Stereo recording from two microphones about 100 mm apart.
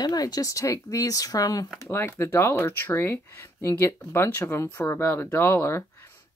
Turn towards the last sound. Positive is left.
turn(degrees=25)  # may be behind; listen again after turning